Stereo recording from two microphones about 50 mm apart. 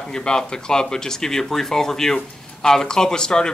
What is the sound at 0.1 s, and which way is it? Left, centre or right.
Speech, centre.